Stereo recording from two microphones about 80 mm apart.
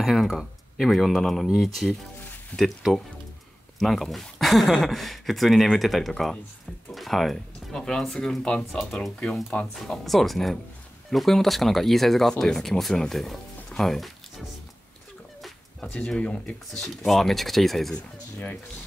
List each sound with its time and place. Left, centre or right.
0.0 s speech: centre
16.1 s speech: centre
17.0 s speech: centre
17.9 s speech: centre